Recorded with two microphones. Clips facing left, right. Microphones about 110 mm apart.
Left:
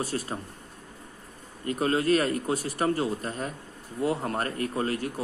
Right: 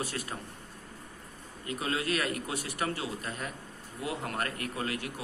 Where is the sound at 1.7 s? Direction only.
40° left (ahead or behind).